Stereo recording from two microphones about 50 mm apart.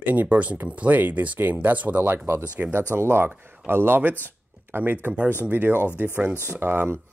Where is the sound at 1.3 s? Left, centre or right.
Right.